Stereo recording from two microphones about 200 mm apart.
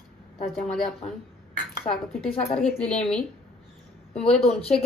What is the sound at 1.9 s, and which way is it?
Speech, 35° left (ahead or behind).